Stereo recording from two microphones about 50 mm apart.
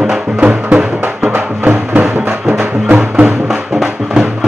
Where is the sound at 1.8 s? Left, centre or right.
Right.